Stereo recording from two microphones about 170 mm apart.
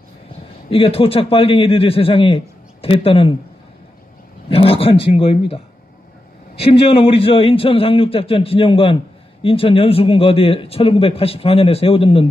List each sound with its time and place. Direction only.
0.7 s speech: 35° left (ahead or behind)
4.5 s speech: 35° left (ahead or behind)
6.6 s speech: 35° left (ahead or behind)